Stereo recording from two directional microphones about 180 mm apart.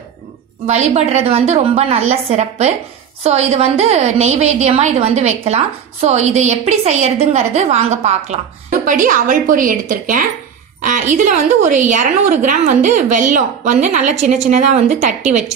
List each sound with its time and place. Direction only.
0.9 s a woman's voice: 35° right (ahead or behind)